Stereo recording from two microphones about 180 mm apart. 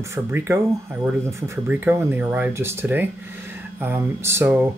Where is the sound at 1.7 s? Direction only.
10° right (ahead or behind).